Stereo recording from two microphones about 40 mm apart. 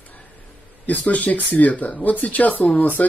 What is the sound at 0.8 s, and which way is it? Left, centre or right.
Speech, left.